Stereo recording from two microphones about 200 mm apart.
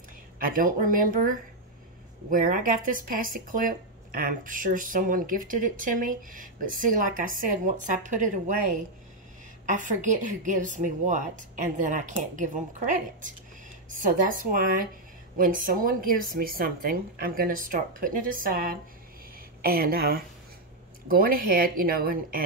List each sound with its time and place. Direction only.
0.5 s speech: 45° right (ahead or behind)